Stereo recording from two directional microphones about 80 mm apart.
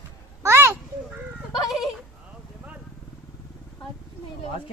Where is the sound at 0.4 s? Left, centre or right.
Right.